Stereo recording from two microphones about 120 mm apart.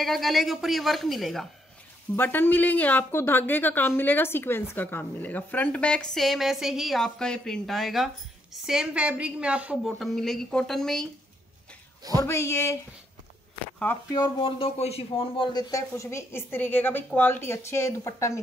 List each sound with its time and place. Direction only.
0.0 s a woman's voice: centre (ahead or behind)
2.1 s a woman's voice: 15° left (ahead or behind); by 9.8 s 10° right (ahead or behind)
9.8 s a woman's voice: centre (ahead or behind)
12.3 s a woman's voice: 20° left (ahead or behind)
13.9 s a woman's voice: 20° left (ahead or behind)
14.4 s speech: 55° left (ahead or behind)
15.7 s a woman's voice: 25° left (ahead or behind)